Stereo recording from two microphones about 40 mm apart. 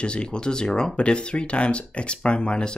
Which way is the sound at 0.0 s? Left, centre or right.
Left.